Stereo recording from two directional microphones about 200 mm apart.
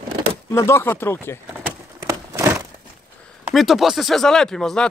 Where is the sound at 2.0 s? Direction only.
15° right (ahead or behind).